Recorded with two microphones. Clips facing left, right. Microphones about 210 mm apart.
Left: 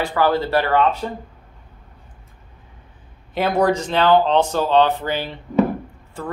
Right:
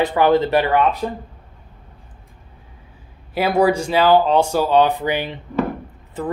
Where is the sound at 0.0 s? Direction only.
20° right (ahead or behind).